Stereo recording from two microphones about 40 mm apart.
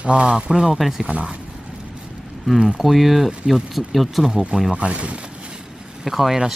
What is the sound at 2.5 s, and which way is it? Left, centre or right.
Speech, centre.